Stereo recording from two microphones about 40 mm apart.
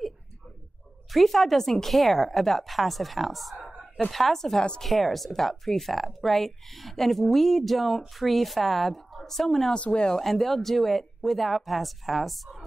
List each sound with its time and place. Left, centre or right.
1.1 s speech: centre
9.8 s speech: left
10.2 s speech: centre